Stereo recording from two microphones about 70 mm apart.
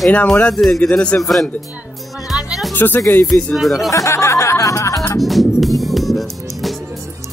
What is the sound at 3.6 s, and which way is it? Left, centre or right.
Speech, centre.